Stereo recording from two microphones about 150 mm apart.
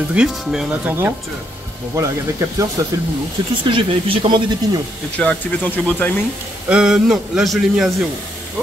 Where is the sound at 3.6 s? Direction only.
35° right (ahead or behind).